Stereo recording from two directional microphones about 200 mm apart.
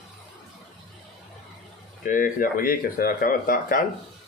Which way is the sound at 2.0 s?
40° left (ahead or behind).